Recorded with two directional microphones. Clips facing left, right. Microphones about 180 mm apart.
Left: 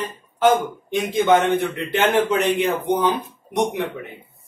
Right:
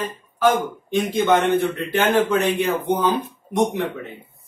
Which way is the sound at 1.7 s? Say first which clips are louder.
Even; 25° left (ahead or behind).